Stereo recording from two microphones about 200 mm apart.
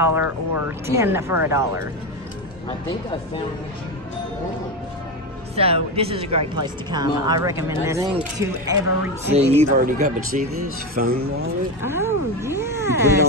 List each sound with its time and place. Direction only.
0.0 s speech: 10° right (ahead or behind)
5.6 s speech: 30° right (ahead or behind)
9.3 s speech: 30° right (ahead or behind)
9.8 s speech: 45° right (ahead or behind)
11.8 s speech: 10° right (ahead or behind)